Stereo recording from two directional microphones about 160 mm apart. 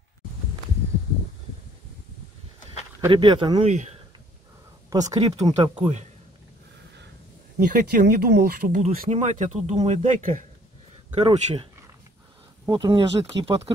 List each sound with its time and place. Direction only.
3.1 s speech: 30° right (ahead or behind)
3.6 s speech: 45° right (ahead or behind)
4.8 s a sound: 20° right (ahead or behind)
5.4 s speech: 30° right (ahead or behind)
7.5 s speech: 60° right (ahead or behind)
9.1 s speech: 45° right (ahead or behind)
11.1 s speech: 45° right (ahead or behind)
12.6 s speech: 25° right (ahead or behind)